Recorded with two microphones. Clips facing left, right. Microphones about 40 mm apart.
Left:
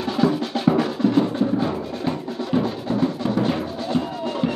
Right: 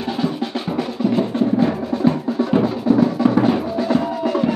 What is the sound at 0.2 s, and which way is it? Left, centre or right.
Music, centre.